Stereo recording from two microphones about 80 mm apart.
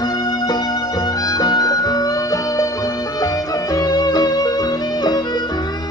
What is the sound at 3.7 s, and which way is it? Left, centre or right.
Music, left.